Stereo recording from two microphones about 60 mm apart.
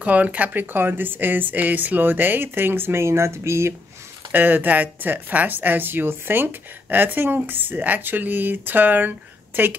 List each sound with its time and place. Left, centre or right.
0.0 s speech: right
4.3 s speech: right